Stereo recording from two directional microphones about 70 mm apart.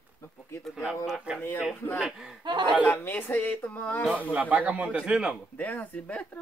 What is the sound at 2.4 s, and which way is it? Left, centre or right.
Speech, right.